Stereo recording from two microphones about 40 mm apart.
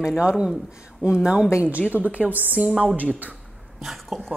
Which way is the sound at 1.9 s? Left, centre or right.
Right.